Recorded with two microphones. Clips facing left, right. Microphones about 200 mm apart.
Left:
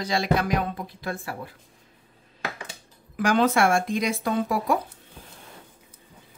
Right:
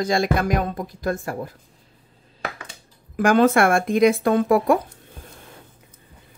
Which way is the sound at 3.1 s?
50° right (ahead or behind).